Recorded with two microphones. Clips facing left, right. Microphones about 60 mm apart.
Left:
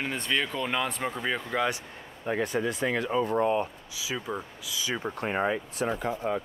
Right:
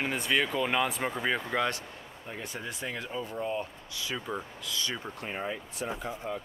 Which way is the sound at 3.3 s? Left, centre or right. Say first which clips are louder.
Left 7 dB; left.